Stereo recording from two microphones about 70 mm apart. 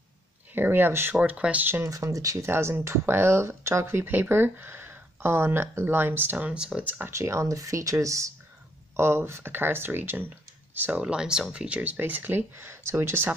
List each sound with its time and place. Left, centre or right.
0.6 s speech: right
1.1 s speech: centre
1.8 s speech: right
6.3 s speech: centre
6.8 s speech: right
7.1 s speech: right
8.9 s speech: right